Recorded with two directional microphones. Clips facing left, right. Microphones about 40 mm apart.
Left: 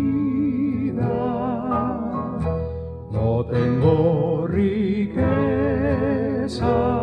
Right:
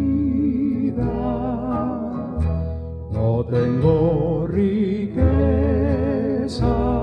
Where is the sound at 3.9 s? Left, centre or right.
Centre.